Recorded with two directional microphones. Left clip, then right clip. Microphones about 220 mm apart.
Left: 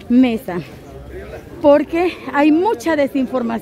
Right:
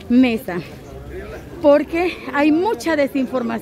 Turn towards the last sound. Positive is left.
turn(degrees=20)  # may be behind; listen again after turning